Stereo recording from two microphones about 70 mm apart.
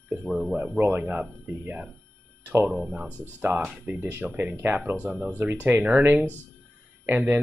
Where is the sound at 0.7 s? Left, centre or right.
Right.